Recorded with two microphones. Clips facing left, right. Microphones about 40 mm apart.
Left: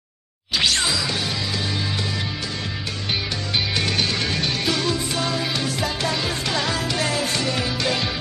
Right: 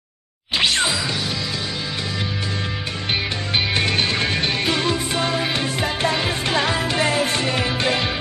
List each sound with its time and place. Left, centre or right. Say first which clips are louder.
0.6 s music: right 2 dB; right
3.1 s music: right 2 dB; right